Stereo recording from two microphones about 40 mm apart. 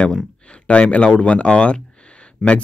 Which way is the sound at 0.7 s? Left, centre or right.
Left.